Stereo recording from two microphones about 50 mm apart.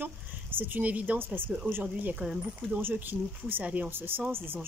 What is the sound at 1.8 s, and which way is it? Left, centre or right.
Speech, right.